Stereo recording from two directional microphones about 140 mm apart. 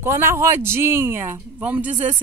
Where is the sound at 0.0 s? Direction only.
15° right (ahead or behind).